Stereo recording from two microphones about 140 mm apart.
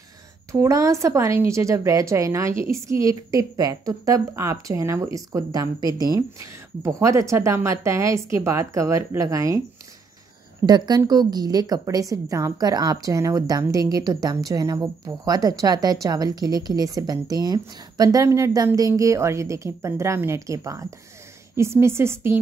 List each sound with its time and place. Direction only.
0.5 s a woman's voice: 20° right (ahead or behind)
10.6 s a woman's voice: 30° right (ahead or behind)